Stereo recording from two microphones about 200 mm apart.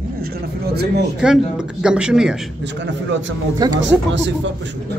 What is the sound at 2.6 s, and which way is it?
Speech, 65° right (ahead or behind).